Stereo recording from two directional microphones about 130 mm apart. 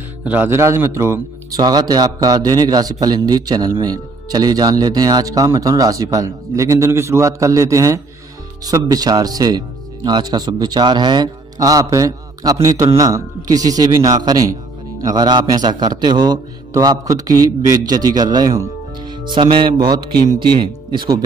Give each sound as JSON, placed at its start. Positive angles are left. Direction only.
{"t": 0.2, "sound": "a man's voice", "side_deg": -10}